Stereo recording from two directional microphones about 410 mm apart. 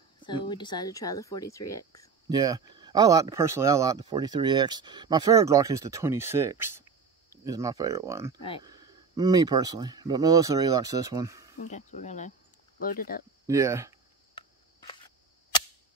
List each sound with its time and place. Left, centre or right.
0.2 s speech: centre
2.2 s speech: centre
11.5 s speech: centre
13.5 s speech: centre
14.4 s a sound: centre